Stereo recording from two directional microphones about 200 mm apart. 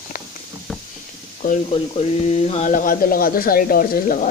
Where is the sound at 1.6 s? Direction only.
30° left (ahead or behind).